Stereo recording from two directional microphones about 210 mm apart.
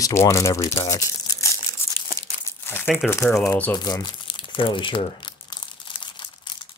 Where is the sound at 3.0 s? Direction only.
10° left (ahead or behind).